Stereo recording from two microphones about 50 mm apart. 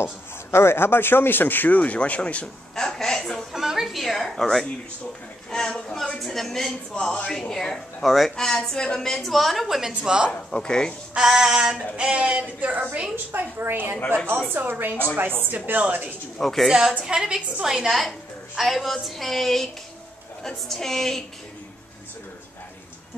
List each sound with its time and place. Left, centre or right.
0.0 s speech: left
2.4 s a sound: centre
3.5 s a sound: centre
5.5 s a woman's voice: centre
9.8 s a woman's voice: centre
10.3 s a woman's voice: centre
11.1 s a woman's voice: centre
12.0 s a sound: right
12.5 s a woman's voice: right
13.1 s a woman's voice: right
16.3 s a woman's voice: centre
17.0 s a woman's voice: centre